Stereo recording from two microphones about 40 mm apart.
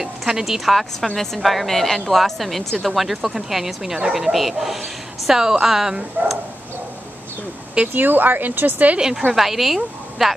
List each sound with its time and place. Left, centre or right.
0.0 s a woman's voice: centre
0.7 s a woman's voice: centre
6.2 s speech: right
7.9 s speech: right
9.3 s a woman's voice: centre